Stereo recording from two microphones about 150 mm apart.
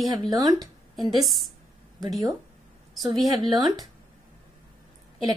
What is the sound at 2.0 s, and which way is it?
A woman's voice, 25° right (ahead or behind).